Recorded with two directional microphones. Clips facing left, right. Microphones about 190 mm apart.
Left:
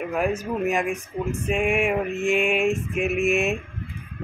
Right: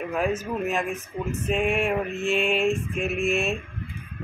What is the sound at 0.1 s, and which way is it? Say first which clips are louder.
Speech: left 1 dB; 10° left (ahead or behind).